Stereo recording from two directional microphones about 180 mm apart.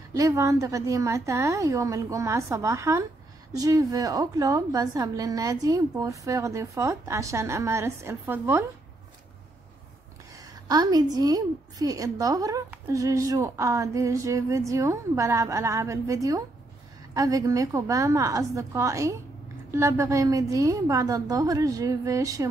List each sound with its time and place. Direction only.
0.1 s a woman's voice: 20° right (ahead or behind)
10.3 s a woman's voice: 20° right (ahead or behind)